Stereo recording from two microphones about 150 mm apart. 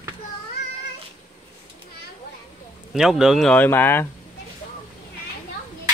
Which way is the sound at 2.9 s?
5° right (ahead or behind).